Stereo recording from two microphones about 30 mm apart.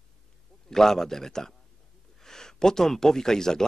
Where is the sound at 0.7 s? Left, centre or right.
Centre.